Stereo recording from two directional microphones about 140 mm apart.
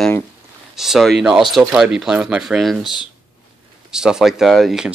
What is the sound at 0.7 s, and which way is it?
Speech, centre (ahead or behind).